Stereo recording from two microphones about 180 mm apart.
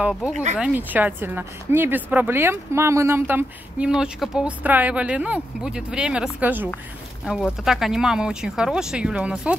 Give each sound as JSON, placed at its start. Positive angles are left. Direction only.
{"t": 0.0, "sound": "speech", "side_deg": 0}